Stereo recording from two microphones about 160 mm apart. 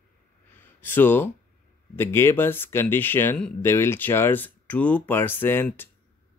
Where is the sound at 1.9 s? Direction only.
15° left (ahead or behind).